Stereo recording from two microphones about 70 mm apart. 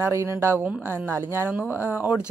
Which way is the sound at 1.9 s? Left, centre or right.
Right.